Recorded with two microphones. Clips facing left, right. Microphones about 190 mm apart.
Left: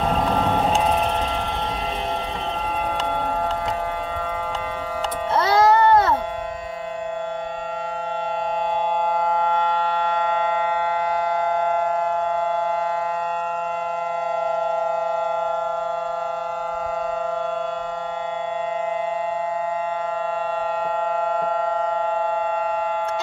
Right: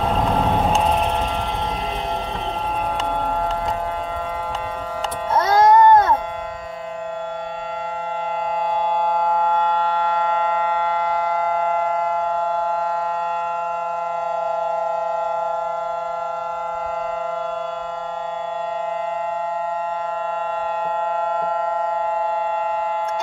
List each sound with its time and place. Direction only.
5.3 s music: 70° left (ahead or behind)